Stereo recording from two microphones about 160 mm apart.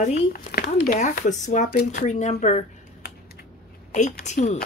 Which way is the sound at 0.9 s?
50° left (ahead or behind).